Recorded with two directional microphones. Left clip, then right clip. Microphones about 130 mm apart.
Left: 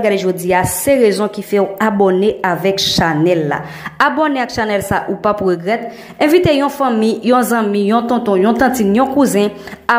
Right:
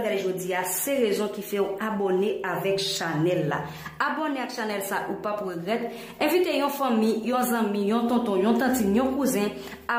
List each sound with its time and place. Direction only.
0.0 s a woman's voice: 40° left (ahead or behind)